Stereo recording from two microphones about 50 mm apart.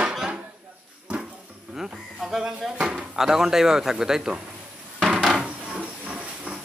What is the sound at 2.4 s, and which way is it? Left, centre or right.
Speech, centre.